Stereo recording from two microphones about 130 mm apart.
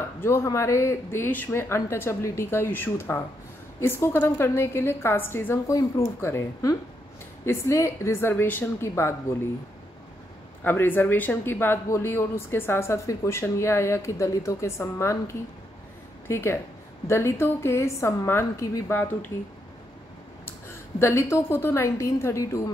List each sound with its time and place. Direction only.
0.2 s speech: 20° left (ahead or behind)
10.6 s a woman's voice: 15° left (ahead or behind)
21.0 s speech: 20° left (ahead or behind)